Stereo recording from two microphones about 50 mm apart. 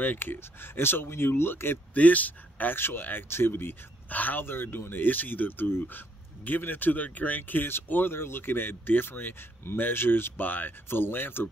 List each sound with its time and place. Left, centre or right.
0.0 s speech: left
2.0 s speech: left
2.7 s speech: left
4.1 s speech: left
4.5 s speech: left